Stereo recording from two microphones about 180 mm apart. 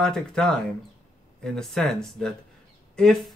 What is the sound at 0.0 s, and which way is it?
Speech, 5° left (ahead or behind).